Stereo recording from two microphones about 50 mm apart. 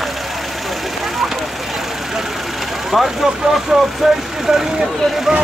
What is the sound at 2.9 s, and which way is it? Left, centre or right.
Speech, centre.